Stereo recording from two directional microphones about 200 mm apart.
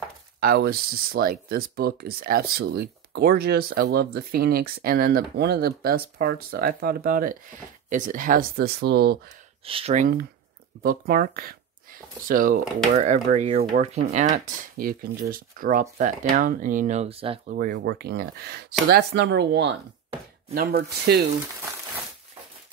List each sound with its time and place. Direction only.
0.4 s speech: 50° right (ahead or behind)
9.7 s speech: 30° right (ahead or behind)
10.8 s speech: 45° right (ahead or behind); by 17.4 s 30° right (ahead or behind)
17.5 s speech: 45° right (ahead or behind)